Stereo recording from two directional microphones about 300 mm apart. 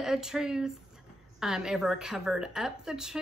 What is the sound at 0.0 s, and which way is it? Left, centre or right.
A woman's voice, centre.